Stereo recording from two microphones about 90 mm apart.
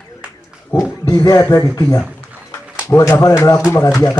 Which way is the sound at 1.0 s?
40° left (ahead or behind).